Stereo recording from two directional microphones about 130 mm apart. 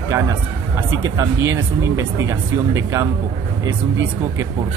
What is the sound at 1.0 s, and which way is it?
Speech, 25° right (ahead or behind).